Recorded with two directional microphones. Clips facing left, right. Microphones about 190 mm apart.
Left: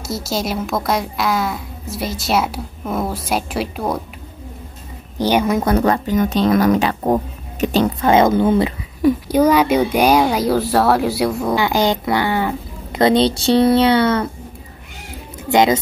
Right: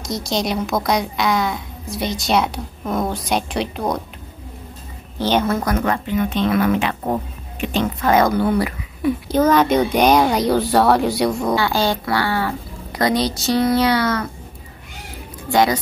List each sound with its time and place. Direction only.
0.0 s a woman's voice: 5° left (ahead or behind)
5.2 s speech: 15° left (ahead or behind)
5.7 s speech: 35° left (ahead or behind)
9.3 s a woman's voice: 10° left (ahead or behind)
11.5 s speech: 15° left (ahead or behind)
15.5 s speech: 20° left (ahead or behind)